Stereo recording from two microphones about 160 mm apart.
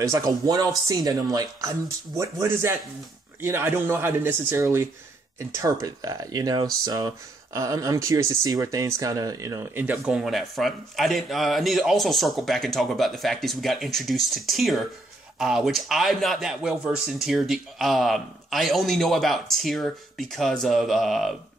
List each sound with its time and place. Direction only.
0.0 s speech: 20° right (ahead or behind); by 21.4 s centre (ahead or behind)